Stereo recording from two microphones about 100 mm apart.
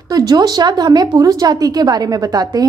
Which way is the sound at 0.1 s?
40° right (ahead or behind).